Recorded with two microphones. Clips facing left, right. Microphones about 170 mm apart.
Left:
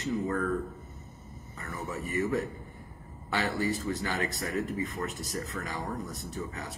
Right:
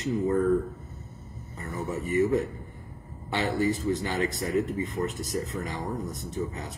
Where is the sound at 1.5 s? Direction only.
20° right (ahead or behind).